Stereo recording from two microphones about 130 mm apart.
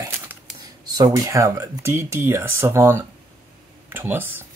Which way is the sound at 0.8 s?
30° right (ahead or behind).